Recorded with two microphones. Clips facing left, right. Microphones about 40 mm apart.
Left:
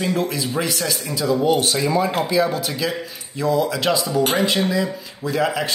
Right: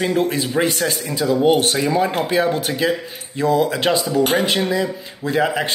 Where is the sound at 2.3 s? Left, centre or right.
Right.